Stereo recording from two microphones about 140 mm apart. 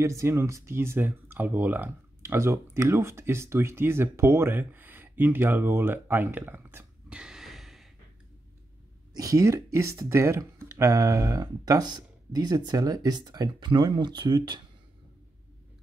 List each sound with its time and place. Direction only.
0.0 s speech: 20° right (ahead or behind); by 7.9 s centre (ahead or behind)
9.1 s speech: 25° right (ahead or behind)